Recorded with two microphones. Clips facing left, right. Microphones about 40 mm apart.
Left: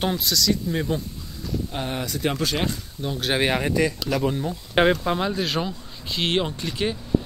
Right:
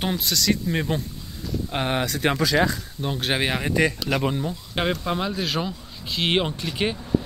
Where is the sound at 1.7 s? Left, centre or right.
Right.